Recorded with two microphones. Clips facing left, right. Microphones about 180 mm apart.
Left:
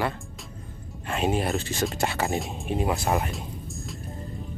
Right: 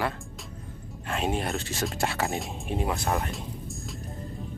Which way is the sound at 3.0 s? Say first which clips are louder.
Left 3 dB; 15° left (ahead or behind).